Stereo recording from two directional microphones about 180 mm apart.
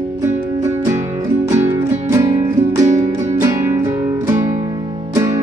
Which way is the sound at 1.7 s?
20° right (ahead or behind).